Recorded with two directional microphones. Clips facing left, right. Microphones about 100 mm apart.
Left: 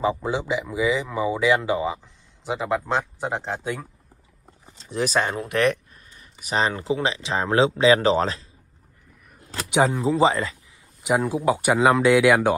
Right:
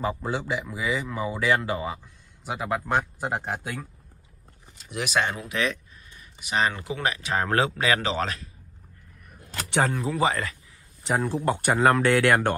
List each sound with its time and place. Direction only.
0.0 s speech: 20° left (ahead or behind)
4.7 s speech: 35° left (ahead or behind)
5.5 s speech: 55° left (ahead or behind)
6.1 s speech: 35° left (ahead or behind)
9.7 s speech: 15° left (ahead or behind)
11.0 s speech: 10° left (ahead or behind)